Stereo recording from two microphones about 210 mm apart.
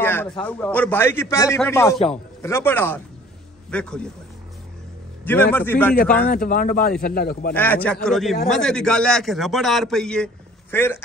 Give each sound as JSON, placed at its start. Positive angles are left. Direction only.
{"t": 0.0, "sound": "a sound", "side_deg": 10}
{"t": 0.5, "sound": "a man's voice", "side_deg": 5}
{"t": 5.2, "sound": "a man's voice", "side_deg": 10}
{"t": 6.2, "sound": "speech", "side_deg": 40}
{"t": 7.5, "sound": "a man's voice", "side_deg": 10}